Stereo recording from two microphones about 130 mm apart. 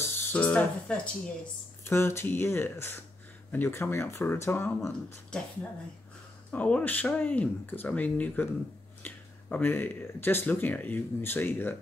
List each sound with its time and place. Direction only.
0.0 s a sound: 15° left (ahead or behind)
1.9 s speech: 20° left (ahead or behind)
6.5 s speech: 10° left (ahead or behind)